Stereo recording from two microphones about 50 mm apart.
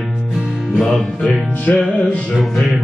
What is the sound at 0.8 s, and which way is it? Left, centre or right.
Music, left.